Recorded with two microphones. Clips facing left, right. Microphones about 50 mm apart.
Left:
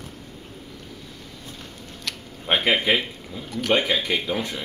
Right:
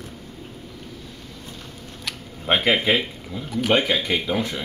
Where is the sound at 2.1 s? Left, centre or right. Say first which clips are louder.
Right 1 dB; centre.